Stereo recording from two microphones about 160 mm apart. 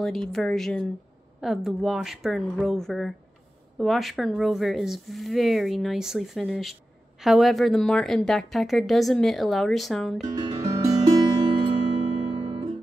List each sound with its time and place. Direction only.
0.0 s speech: centre (ahead or behind)
10.2 s music: 25° right (ahead or behind)